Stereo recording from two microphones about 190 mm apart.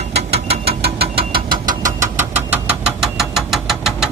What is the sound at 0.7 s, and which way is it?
Engine, 55° right (ahead or behind).